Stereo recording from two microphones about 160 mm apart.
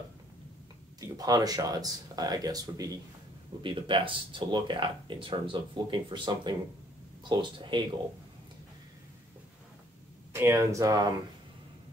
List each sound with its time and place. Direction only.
1.0 s speech: 25° right (ahead or behind)
10.3 s speech: 15° right (ahead or behind)